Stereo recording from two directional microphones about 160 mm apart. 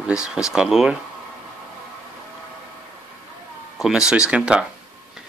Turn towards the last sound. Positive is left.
turn(degrees=-5)  # may be behind; listen again after turning